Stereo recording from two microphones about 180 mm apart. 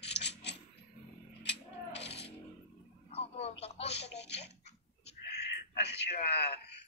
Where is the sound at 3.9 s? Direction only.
70° left (ahead or behind).